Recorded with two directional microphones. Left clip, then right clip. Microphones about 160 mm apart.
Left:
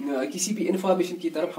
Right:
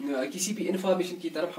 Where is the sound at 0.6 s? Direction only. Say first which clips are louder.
Left 4 dB; 20° left (ahead or behind).